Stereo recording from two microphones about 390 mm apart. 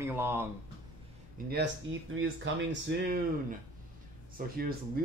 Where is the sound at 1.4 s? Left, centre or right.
Right.